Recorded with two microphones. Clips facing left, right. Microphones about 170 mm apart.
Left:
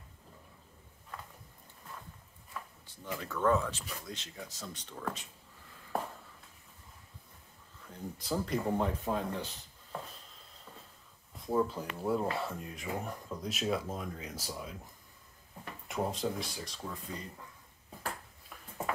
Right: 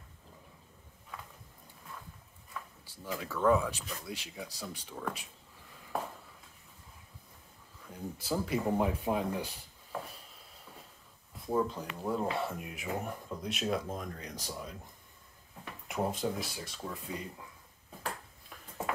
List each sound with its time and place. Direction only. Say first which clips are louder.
2.8 s speech: right 2 dB; 5° right (ahead or behind)
7.9 s speech: right 1 dB; 5° right (ahead or behind)
11.3 s speech: even; centre (ahead or behind)
15.9 s speech: right 1 dB; centre (ahead or behind)